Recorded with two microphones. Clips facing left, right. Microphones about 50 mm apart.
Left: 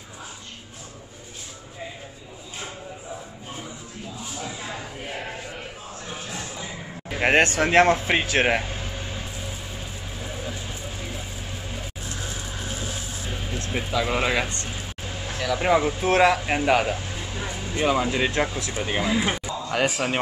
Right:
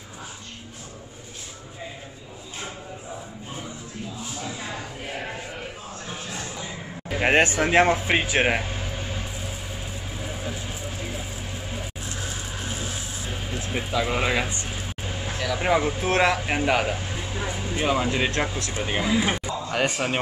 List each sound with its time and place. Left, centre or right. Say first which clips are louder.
4.4 s a sound: even; centre
6.0 s a sound: even; centre
7.2 s speech: even; centre
7.6 s air conditioning: left 1 dB; centre
13.5 s speech: even; centre
16.9 s speech: right 1 dB; centre